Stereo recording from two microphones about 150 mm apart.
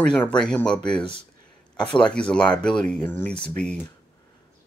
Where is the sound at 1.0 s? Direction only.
35° left (ahead or behind).